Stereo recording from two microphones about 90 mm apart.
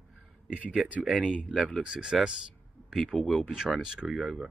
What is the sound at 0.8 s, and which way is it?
Speech, 15° right (ahead or behind).